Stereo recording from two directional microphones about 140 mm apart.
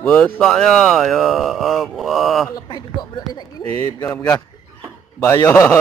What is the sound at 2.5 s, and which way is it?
A man's voice, 30° left (ahead or behind).